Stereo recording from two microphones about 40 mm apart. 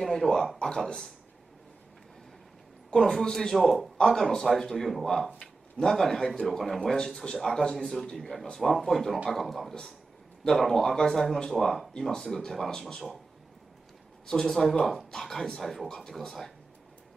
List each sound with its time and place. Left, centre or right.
0.0 s speech: centre
0.6 s speech: centre
2.9 s speech: centre
3.5 s speech: centre
4.0 s speech: centre
8.1 s speech: centre
14.2 s speech: centre
14.5 s speech: centre